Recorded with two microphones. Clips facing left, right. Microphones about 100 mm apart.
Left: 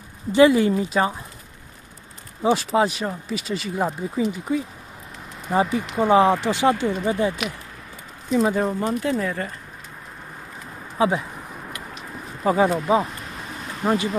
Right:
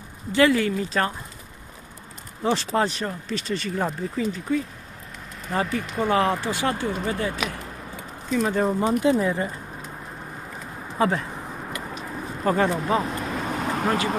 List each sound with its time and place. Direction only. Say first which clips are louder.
0.3 s speech: left 4 dB; 20° left (ahead or behind)
2.4 s speech: left 3 dB; 5° left (ahead or behind)
8.7 s speech: right 3 dB; 20° right (ahead or behind)
11.0 s speech: left 2 dB; 10° left (ahead or behind)
12.4 s speech: left 3 dB; 10° left (ahead or behind)
13.6 s vehicle: right 9 dB; 75° right (ahead or behind)